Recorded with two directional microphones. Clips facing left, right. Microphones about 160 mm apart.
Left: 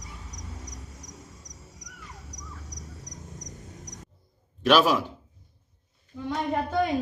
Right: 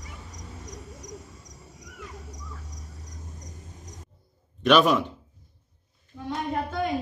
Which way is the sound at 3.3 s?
75° left (ahead or behind).